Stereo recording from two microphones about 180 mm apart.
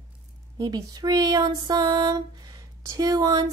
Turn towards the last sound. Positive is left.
turn(degrees=-25)  # may be behind; listen again after turning